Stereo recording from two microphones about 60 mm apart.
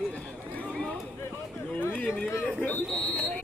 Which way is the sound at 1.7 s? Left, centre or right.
Left.